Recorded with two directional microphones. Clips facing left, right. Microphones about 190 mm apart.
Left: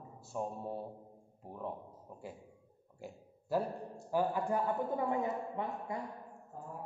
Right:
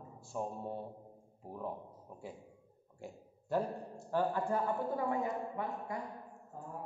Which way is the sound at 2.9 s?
Centre (ahead or behind).